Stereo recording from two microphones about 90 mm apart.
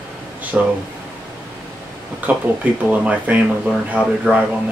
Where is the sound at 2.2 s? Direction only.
15° right (ahead or behind).